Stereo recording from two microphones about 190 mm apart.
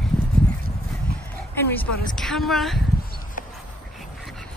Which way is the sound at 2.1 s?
Centre (ahead or behind).